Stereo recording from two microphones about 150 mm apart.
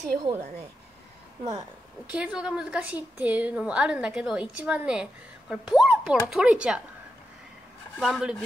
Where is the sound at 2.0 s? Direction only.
10° right (ahead or behind).